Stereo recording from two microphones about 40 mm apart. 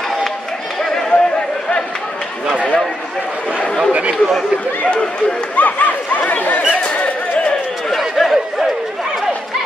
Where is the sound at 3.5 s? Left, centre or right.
Left.